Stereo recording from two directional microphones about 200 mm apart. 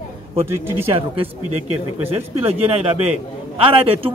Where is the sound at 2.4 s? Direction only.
30° right (ahead or behind).